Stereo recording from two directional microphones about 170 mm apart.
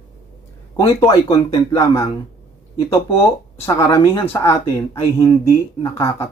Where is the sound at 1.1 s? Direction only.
25° left (ahead or behind).